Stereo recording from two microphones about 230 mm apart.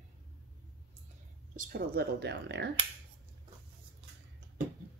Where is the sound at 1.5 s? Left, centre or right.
Right.